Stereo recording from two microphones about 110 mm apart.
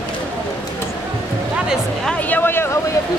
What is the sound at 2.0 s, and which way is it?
Speech, 15° left (ahead or behind).